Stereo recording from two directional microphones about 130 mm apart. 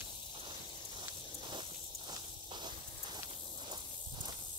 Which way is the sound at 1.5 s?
35° right (ahead or behind).